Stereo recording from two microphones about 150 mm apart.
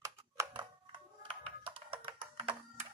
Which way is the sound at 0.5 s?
35° right (ahead or behind).